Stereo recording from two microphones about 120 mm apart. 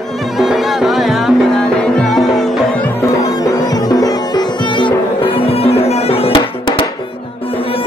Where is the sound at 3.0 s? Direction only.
30° left (ahead or behind); by 7.9 s 50° left (ahead or behind).